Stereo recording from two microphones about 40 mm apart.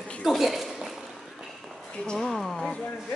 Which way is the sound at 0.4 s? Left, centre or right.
Centre.